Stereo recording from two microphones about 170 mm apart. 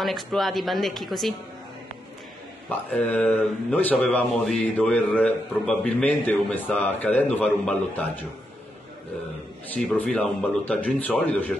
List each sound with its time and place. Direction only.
0.0 s a woman's voice: centre (ahead or behind)
2.7 s speech: 10° left (ahead or behind)
9.8 s speech: 5° left (ahead or behind)